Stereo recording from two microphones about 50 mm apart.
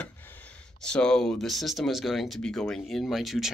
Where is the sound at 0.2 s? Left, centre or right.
Left.